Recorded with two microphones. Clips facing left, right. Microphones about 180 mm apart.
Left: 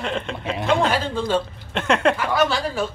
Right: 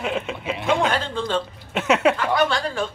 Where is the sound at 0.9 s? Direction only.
5° left (ahead or behind).